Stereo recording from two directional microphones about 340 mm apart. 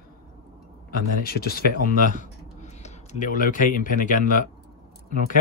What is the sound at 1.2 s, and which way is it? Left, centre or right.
Speech, left.